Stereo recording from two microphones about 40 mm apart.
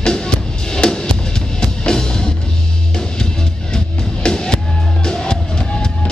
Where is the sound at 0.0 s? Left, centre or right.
Centre.